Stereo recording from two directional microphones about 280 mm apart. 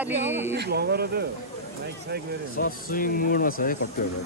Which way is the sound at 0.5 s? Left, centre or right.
Right.